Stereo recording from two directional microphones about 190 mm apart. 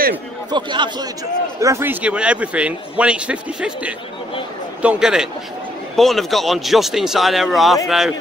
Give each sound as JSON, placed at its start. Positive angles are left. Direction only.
{"t": 0.5, "sound": "a man's voice", "side_deg": -25}